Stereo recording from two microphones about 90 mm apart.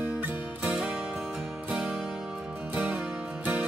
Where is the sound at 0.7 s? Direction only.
10° right (ahead or behind).